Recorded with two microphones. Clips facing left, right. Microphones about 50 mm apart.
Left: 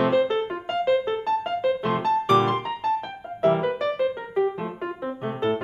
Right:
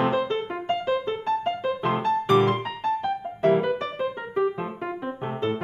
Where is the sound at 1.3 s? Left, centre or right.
Right.